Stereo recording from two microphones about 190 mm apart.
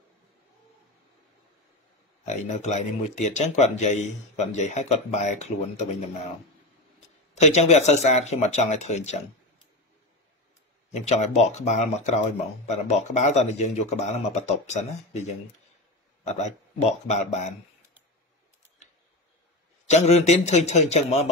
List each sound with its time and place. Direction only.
2.2 s speech: 40° left (ahead or behind)
7.3 s speech: 35° left (ahead or behind)
10.9 s speech: 35° left (ahead or behind)
19.9 s speech: 35° left (ahead or behind)